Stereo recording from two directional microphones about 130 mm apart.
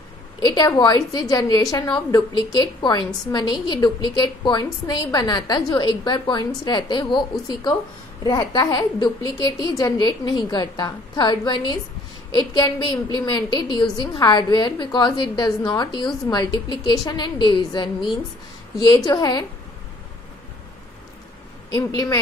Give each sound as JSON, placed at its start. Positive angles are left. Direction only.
{"t": 0.4, "sound": "a woman's voice", "side_deg": 30}
{"t": 21.7, "sound": "speech", "side_deg": 25}